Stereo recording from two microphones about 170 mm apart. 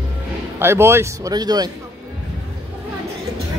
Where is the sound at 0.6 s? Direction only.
15° right (ahead or behind).